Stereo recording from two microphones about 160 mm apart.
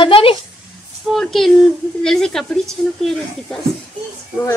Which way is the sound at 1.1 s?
Centre (ahead or behind).